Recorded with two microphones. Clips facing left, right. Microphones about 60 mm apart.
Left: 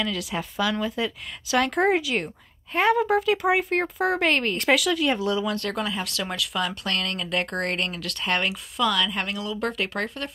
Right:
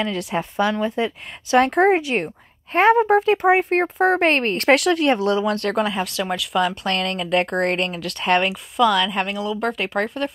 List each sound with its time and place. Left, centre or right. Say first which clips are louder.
0.0 s a woman's voice: right 5 dB; right
4.6 s a woman's voice: right 5 dB; right